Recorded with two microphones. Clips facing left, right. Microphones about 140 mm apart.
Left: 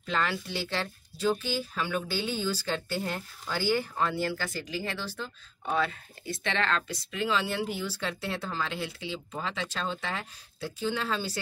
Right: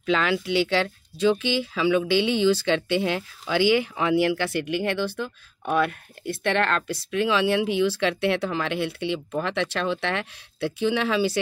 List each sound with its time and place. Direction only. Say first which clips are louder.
0.0 s speech: right 7 dB; 90° right; by 6.8 s 60° right (ahead or behind)
7.1 s speech: right 8 dB; 75° right (ahead or behind)